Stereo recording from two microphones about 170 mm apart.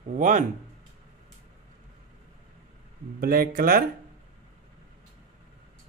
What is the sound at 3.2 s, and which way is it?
Speech, 60° right (ahead or behind).